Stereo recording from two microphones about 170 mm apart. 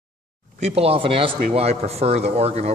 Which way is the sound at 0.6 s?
40° right (ahead or behind).